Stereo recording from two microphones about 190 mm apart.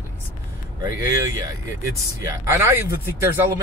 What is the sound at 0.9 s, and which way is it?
Speech, 20° right (ahead or behind).